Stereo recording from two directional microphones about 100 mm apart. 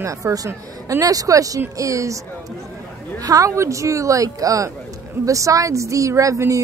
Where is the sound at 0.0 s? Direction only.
35° right (ahead or behind).